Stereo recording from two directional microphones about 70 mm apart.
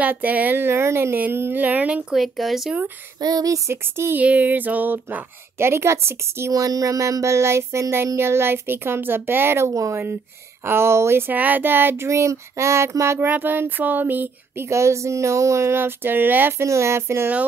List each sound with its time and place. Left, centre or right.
0.0 s a woman's voice: right
1.1 s a woman's voice: right
2.1 s speech: centre
3.2 s speech: right
3.5 s a woman's voice: right
4.2 s a woman's voice: right
6.5 s a woman's voice: right
12.1 s speech: right
13.2 s a woman's voice: right
14.7 s speech: right
16.6 s a woman's voice: right